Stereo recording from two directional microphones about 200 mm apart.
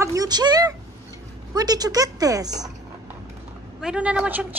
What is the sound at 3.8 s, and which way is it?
Speech, 5° right (ahead or behind).